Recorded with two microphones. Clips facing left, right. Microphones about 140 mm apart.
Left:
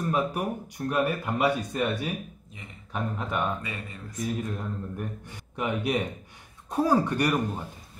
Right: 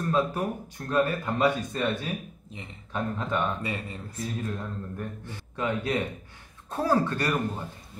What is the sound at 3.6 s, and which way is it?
Speech, 30° right (ahead or behind).